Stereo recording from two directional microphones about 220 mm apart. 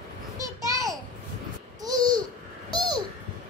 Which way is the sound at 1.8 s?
20° right (ahead or behind).